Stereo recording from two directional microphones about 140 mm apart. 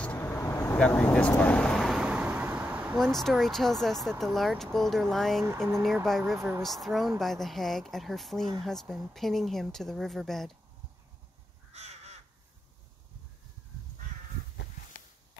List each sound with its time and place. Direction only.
0.0 s vehicle: 10° left (ahead or behind); by 3.0 s 10° right (ahead or behind)
3.0 s speech: centre (ahead or behind)
11.7 s crow: 50° right (ahead or behind)